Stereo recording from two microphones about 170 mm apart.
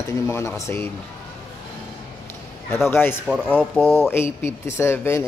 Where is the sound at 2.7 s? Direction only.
15° left (ahead or behind).